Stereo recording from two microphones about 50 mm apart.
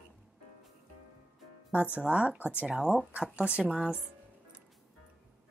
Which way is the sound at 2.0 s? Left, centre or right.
Right.